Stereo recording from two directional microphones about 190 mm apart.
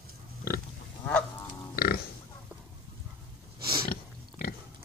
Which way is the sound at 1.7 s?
55° left (ahead or behind).